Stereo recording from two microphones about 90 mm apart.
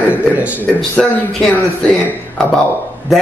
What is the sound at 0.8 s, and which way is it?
Speech, 5° left (ahead or behind).